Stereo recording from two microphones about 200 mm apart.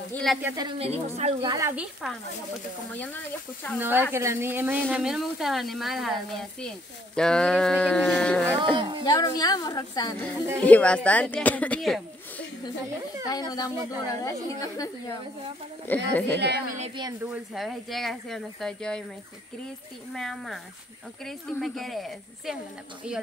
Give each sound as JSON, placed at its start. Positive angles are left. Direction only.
{"t": 0.1, "sound": "speech", "side_deg": 0}
{"t": 0.4, "sound": "a woman's voice", "side_deg": -10}
{"t": 0.7, "sound": "a woman's voice", "side_deg": -30}
{"t": 1.5, "sound": "a woman's voice", "side_deg": -15}
{"t": 3.7, "sound": "a woman's voice", "side_deg": -10}
{"t": 7.2, "sound": "speech", "side_deg": 5}
{"t": 8.5, "sound": "speech", "side_deg": -25}
{"t": 9.0, "sound": "a woman's voice", "side_deg": 20}
{"t": 10.6, "sound": "a woman's voice", "side_deg": 5}
{"t": 13.3, "sound": "a woman's voice", "side_deg": 20}
{"t": 15.9, "sound": "a woman's voice", "side_deg": 10}
{"t": 16.3, "sound": "speech", "side_deg": -55}
{"t": 17.2, "sound": "speech", "side_deg": -5}
{"t": 20.2, "sound": "speech", "side_deg": 0}